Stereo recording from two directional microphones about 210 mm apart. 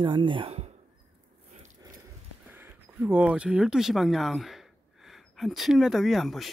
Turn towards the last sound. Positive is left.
turn(degrees=0)  # may be behind; listen again after turning